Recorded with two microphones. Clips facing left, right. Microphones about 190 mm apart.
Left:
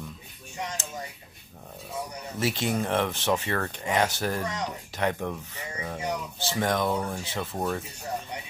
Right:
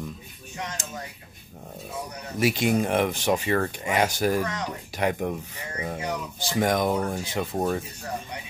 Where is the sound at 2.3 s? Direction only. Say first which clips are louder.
Right 5 dB; 10° right (ahead or behind).